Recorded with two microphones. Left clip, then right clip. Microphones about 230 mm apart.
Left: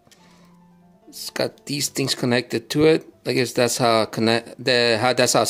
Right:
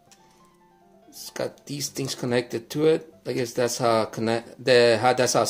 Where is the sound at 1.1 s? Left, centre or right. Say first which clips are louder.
Left 6 dB; left.